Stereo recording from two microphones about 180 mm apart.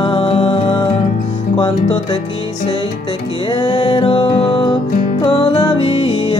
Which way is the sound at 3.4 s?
25° left (ahead or behind).